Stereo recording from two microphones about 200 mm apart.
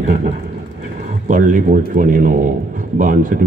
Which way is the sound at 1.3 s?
40° right (ahead or behind).